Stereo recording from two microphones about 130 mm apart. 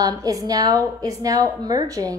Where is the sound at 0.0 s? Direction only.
25° right (ahead or behind).